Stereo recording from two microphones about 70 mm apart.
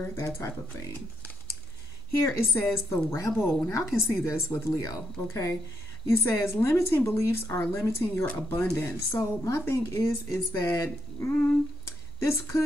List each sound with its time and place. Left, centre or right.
0.0 s speech: left
2.1 s speech: left